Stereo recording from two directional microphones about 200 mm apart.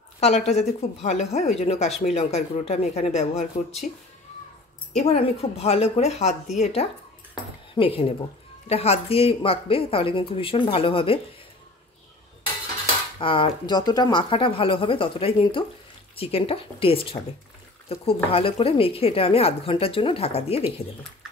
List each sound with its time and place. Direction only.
0.2 s speech: 35° left (ahead or behind)
4.9 s speech: 30° left (ahead or behind)
13.2 s speech: 25° left (ahead or behind)